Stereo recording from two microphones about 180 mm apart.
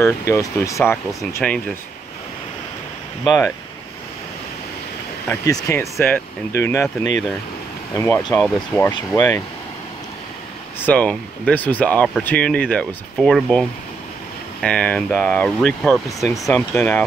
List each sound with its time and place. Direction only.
0.0 s speech: 15° left (ahead or behind)
3.3 s speech: 15° left (ahead or behind)
5.3 s speech: 20° left (ahead or behind)
7.9 s speech: 15° left (ahead or behind)
9.1 s speech: 20° left (ahead or behind)
10.9 s speech: 10° left (ahead or behind)